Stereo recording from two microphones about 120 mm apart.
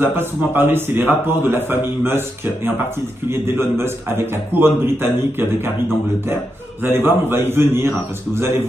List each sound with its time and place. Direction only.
0.0 s a man's voice: 20° right (ahead or behind)